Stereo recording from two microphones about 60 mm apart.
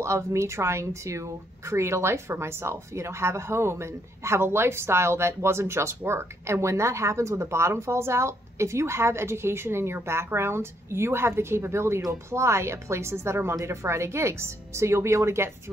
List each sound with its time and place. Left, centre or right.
0.0 s speech: right